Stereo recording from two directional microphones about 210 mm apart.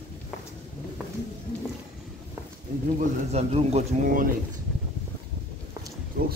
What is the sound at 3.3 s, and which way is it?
Speech, 30° right (ahead or behind).